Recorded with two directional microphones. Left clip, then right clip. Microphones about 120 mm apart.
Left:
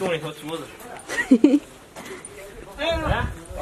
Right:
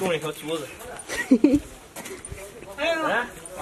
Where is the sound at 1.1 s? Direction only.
15° left (ahead or behind).